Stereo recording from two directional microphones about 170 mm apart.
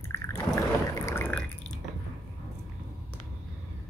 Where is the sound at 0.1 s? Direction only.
15° left (ahead or behind).